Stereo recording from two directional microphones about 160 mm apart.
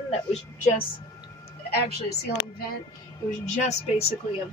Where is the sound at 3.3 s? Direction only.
45° left (ahead or behind).